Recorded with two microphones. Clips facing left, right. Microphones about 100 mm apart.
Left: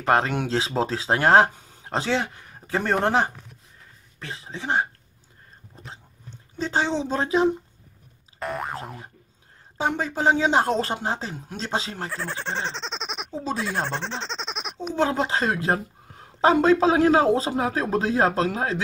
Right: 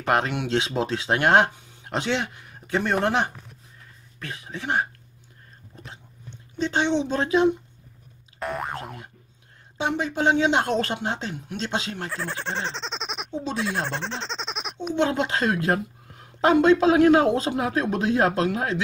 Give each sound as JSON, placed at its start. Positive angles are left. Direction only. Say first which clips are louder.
{"t": 0.0, "sound": "speech", "louder": "left 2 dB", "side_deg": 35}
{"t": 6.6, "sound": "speech", "louder": "right 1 dB", "side_deg": 35}
{"t": 8.4, "sound": "boing", "louder": "even", "side_deg": 0}
{"t": 9.8, "sound": "speech", "louder": "even", "side_deg": 40}
{"t": 12.1, "sound": "speech", "louder": "even", "side_deg": 0}
{"t": 13.3, "sound": "speech", "louder": "left 1 dB", "side_deg": 40}
{"t": 13.6, "sound": "speech", "louder": "right 1 dB", "side_deg": 0}
{"t": 15.0, "sound": "speech", "louder": "even", "side_deg": 30}